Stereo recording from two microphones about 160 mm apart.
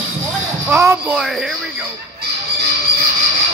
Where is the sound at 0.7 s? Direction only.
10° right (ahead or behind).